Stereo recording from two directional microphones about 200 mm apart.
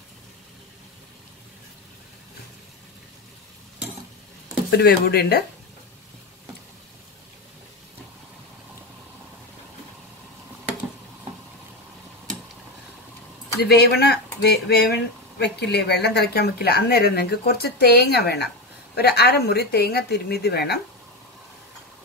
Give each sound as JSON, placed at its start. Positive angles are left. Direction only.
{"t": 4.6, "sound": "speech", "side_deg": 55}
{"t": 13.6, "sound": "speech", "side_deg": 55}